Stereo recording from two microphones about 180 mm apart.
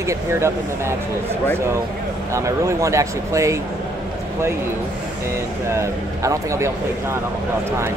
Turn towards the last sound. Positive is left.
turn(degrees=-15)  # may be behind; listen again after turning